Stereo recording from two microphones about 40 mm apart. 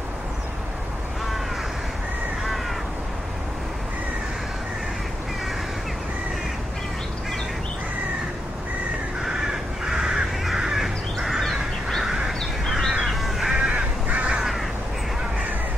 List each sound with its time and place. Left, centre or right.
9.8 s crow: centre
11.1 s crow: centre
13.6 s crow: centre
14.0 s crow: right